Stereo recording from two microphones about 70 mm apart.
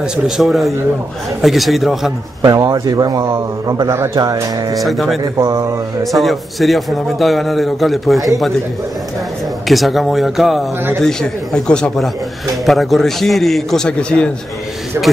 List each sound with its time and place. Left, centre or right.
0.4 s a man's voice: centre
2.4 s speech: right
3.9 s speech: right
4.2 s music: right
4.7 s a man's voice: centre
5.2 s speech: right
6.1 s a man's voice: centre
9.7 s a man's voice: centre
11.1 s speech: centre
12.6 s a man's voice: centre